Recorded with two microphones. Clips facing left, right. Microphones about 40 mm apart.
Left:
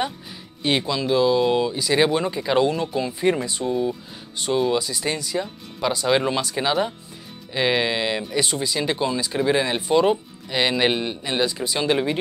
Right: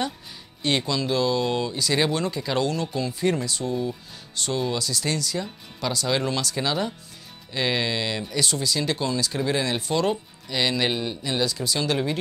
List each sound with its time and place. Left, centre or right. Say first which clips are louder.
0.6 s speech: left 2 dB; centre